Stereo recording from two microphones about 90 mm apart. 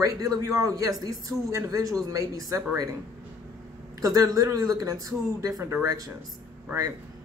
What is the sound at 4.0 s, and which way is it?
Speech, 40° right (ahead or behind).